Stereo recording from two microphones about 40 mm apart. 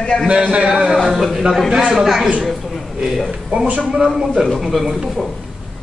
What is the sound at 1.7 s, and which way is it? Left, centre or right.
Speech, centre.